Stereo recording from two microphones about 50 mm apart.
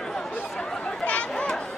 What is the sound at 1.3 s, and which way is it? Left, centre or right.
Children playing, centre.